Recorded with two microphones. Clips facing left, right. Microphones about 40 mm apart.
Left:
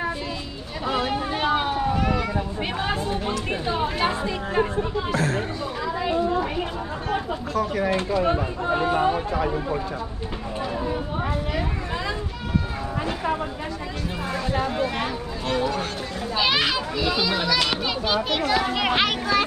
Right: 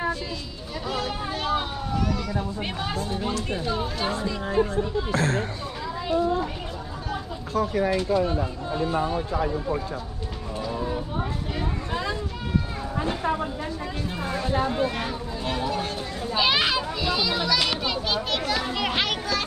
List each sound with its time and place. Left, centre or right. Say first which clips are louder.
0.8 s vehicle: left 5 dB; left
3.3 s speech: left 2 dB; left
5.1 s speech: even; right
7.9 s speech: left 1 dB; left
16.3 s a child's voice: even; centre